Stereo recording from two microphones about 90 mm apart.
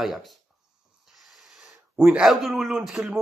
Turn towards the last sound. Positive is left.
turn(degrees=-5)  # may be behind; listen again after turning